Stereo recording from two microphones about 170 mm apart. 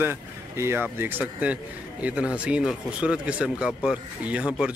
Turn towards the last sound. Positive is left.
turn(degrees=-5)  # may be behind; listen again after turning